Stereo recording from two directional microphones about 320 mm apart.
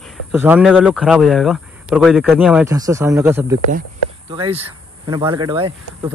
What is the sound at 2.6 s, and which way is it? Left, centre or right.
Speech, centre.